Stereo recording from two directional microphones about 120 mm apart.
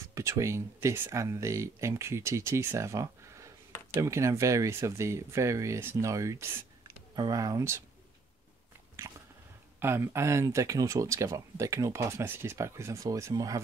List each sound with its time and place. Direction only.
0.0 s speech: 25° right (ahead or behind)
9.8 s speech: 20° right (ahead or behind)